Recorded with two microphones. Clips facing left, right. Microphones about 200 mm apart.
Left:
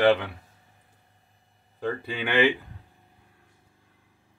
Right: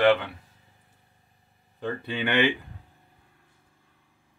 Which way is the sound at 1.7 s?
10° left (ahead or behind).